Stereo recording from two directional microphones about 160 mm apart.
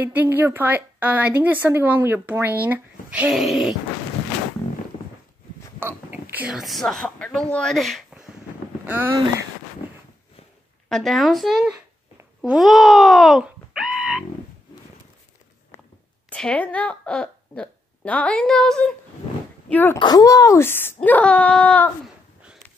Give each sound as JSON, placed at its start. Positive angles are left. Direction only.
{"t": 0.0, "sound": "a woman's voice", "side_deg": -10}
{"t": 5.8, "sound": "speech", "side_deg": -15}
{"t": 8.8, "sound": "a woman's voice", "side_deg": -15}
{"t": 10.9, "sound": "speech", "side_deg": 0}
{"t": 12.4, "sound": "a sound", "side_deg": 0}
{"t": 15.7, "sound": "whispering", "side_deg": 15}
{"t": 16.3, "sound": "a woman's voice", "side_deg": 5}
{"t": 20.0, "sound": "speech", "side_deg": 25}
{"t": 22.0, "sound": "a sound", "side_deg": -5}